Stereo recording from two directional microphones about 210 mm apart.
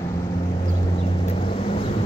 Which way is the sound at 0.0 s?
30° left (ahead or behind).